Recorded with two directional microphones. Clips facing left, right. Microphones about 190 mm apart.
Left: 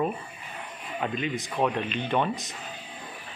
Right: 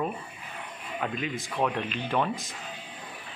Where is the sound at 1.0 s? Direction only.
Centre (ahead or behind).